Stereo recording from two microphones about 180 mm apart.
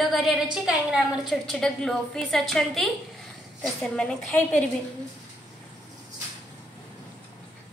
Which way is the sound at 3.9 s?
5° left (ahead or behind).